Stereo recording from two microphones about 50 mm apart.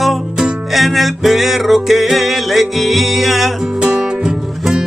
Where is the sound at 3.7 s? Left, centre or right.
Centre.